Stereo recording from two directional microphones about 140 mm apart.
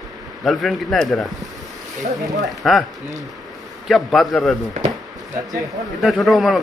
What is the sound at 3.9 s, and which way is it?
Speech, centre (ahead or behind).